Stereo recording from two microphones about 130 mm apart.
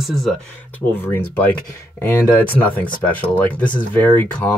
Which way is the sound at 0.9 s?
15° left (ahead or behind).